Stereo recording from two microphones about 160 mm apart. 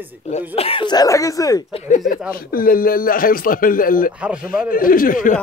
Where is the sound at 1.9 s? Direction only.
55° left (ahead or behind).